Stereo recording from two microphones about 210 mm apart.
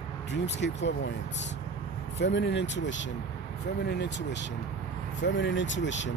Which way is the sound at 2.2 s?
55° left (ahead or behind).